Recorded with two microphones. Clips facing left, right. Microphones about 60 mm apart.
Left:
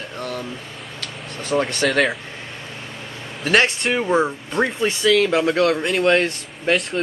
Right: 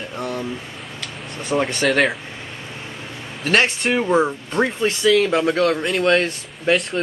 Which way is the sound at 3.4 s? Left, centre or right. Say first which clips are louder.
Even; centre.